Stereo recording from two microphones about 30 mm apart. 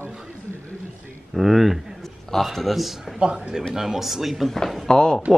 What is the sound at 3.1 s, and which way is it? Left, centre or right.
Speech, right.